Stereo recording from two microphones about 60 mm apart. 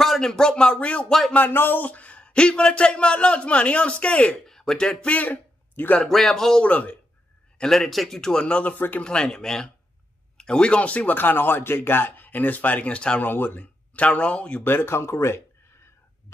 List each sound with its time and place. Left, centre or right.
0.0 s a man's voice: centre
1.3 s speech: left
5.9 s a man's voice: centre
6.6 s speech: left
7.5 s a man's voice: centre
8.7 s speech: left
9.0 s a man's voice: centre
13.2 s speech: left
13.9 s speech: left
14.6 s speech: left